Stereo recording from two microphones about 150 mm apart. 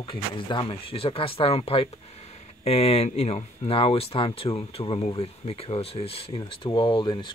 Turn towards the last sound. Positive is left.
turn(degrees=30)  # may be behind; listen again after turning